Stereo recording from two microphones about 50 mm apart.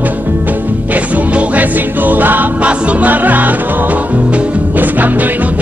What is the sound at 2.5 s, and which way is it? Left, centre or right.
Music, right.